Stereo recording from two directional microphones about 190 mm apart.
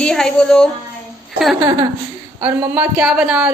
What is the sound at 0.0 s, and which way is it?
Speech, 5° left (ahead or behind).